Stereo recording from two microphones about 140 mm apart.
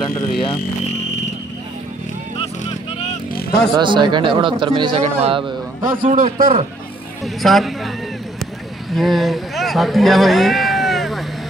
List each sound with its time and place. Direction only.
3.7 s speech: 35° right (ahead or behind)
5.0 s a man's voice: 45° right (ahead or behind)
5.9 s a man's voice: 75° right (ahead or behind)
7.4 s speech: centre (ahead or behind)
8.9 s speech: centre (ahead or behind)